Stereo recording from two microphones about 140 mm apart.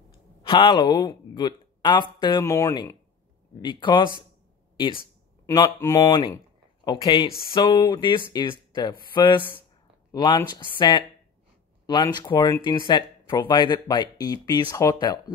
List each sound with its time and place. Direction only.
0.5 s speech: 35° left (ahead or behind)
2.4 s speech: 20° left (ahead or behind)
3.6 s speech: 35° left (ahead or behind)
5.8 s speech: 20° left (ahead or behind)
6.8 s speech: 30° left (ahead or behind)